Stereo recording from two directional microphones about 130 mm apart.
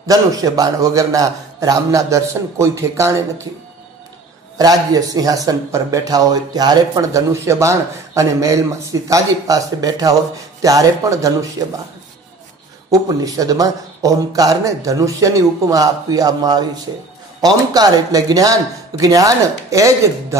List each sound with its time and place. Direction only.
0.0 s speech: 30° right (ahead or behind)
4.6 s speech: 30° right (ahead or behind)
12.9 s speech: 25° right (ahead or behind)